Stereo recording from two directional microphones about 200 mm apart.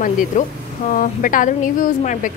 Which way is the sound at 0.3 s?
40° left (ahead or behind).